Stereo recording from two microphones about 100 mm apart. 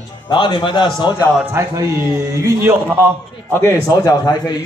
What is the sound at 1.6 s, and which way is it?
A man's voice, 25° right (ahead or behind).